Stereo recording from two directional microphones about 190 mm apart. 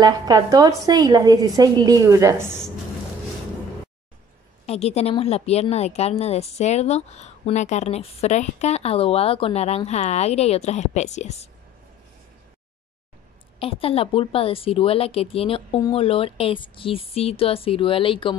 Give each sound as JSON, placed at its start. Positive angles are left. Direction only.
{"t": 0.0, "sound": "a woman's voice", "side_deg": -20}
{"t": 4.6, "sound": "a woman's voice", "side_deg": 35}
{"t": 13.6, "sound": "speech", "side_deg": 30}